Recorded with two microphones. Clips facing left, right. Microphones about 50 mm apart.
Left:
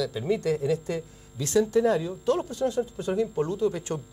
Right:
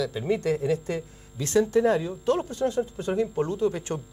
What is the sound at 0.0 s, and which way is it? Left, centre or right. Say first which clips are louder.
Speech: right 1 dB; right.